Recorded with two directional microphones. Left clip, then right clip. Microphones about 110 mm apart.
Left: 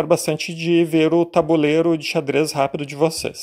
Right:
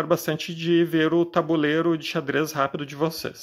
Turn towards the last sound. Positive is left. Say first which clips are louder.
# left 7 dB
turn(degrees=35)  # may be behind; listen again after turning